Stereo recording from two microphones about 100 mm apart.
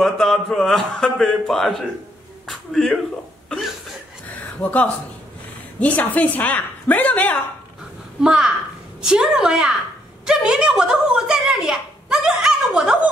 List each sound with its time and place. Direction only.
0.0 s a man's voice: 5° left (ahead or behind)
4.6 s a woman's voice: 15° left (ahead or behind)
8.2 s a woman's voice: 5° right (ahead or behind)